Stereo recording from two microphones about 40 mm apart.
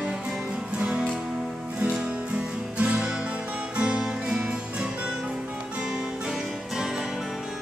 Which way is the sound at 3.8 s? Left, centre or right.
Centre.